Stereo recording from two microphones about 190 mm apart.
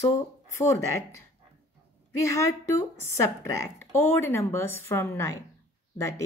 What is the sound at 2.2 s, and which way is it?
A woman's voice, 15° left (ahead or behind).